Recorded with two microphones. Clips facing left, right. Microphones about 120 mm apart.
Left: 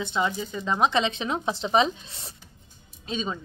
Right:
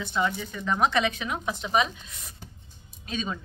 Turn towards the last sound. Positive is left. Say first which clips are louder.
# left 2 dB
turn(degrees=25)  # may be behind; listen again after turning